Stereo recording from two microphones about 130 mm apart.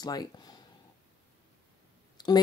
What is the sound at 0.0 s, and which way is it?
Speech, 30° left (ahead or behind).